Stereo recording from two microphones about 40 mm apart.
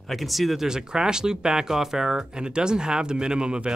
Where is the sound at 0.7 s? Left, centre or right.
Centre.